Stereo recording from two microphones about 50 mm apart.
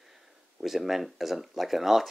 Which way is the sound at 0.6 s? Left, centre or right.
Centre.